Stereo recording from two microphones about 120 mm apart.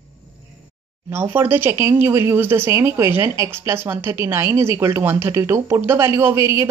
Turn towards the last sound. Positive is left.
turn(degrees=-25)  # may be behind; listen again after turning